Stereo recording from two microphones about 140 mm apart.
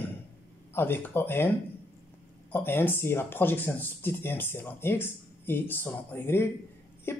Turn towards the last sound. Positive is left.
turn(degrees=15)  # may be behind; listen again after turning